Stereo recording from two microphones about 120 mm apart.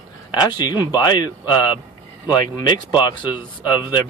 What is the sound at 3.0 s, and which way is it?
Speech, 40° left (ahead or behind).